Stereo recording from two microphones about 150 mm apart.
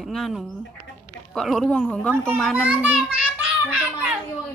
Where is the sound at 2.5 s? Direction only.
10° right (ahead or behind).